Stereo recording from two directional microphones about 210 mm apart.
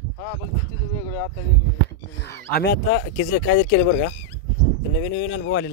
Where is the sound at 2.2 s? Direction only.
50° left (ahead or behind).